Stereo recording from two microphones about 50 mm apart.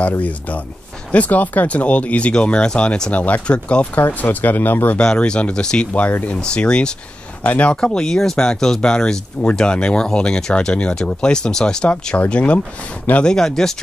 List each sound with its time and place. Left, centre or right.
1.1 s speech: left
3.9 s speech: left
4.9 s speech: left
7.4 s speech: left
7.7 s speech: centre